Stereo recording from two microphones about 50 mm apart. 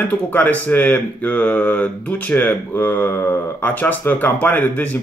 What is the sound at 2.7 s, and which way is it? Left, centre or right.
Speech, left.